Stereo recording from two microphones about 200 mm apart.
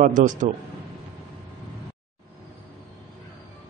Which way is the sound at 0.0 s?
40° right (ahead or behind).